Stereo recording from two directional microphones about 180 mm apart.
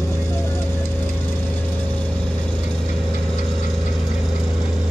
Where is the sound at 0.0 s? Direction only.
15° left (ahead or behind).